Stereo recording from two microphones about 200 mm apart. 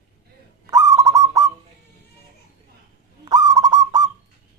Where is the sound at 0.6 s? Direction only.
15° right (ahead or behind).